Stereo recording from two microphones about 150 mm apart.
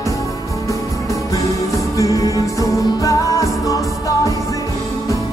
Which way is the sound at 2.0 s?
20° left (ahead or behind).